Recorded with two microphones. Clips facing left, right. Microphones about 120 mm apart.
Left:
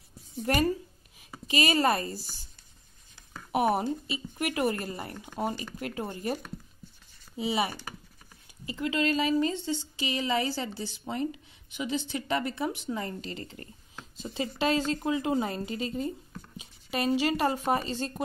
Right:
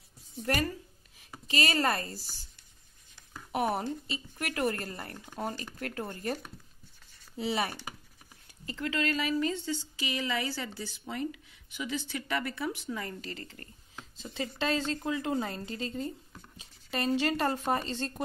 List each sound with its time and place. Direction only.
0.4 s a woman's voice: 20° left (ahead or behind)
3.5 s a woman's voice: 15° left (ahead or behind)